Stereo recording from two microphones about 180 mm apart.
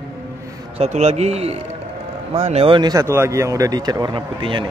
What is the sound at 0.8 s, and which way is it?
A man's voice, 40° right (ahead or behind).